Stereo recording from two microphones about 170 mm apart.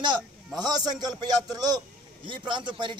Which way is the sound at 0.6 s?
25° right (ahead or behind).